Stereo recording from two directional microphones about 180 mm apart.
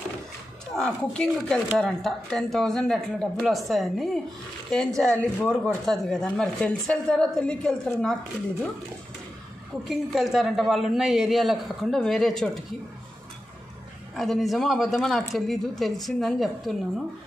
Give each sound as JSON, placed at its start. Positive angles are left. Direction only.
{"t": 0.7, "sound": "speech", "side_deg": 5}
{"t": 9.8, "sound": "speech", "side_deg": 0}
{"t": 14.1, "sound": "speech", "side_deg": 0}